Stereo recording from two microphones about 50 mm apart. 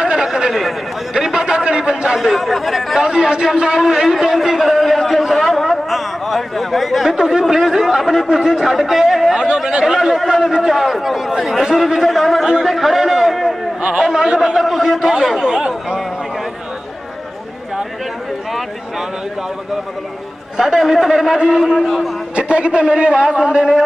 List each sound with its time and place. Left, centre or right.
0.0 s chatter: centre
1.1 s a sound: centre
2.1 s speech: centre
3.0 s a sound: centre
7.1 s a man's voice: centre
13.8 s a man's voice: centre
15.0 s a man's voice: centre
20.5 s a man's voice: centre
21.6 s speech: centre
22.3 s a man's voice: right